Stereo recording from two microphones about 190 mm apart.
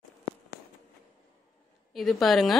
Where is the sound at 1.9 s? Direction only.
Centre (ahead or behind).